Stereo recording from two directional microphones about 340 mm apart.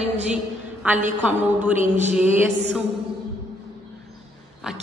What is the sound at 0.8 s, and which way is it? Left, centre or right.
Speech, centre.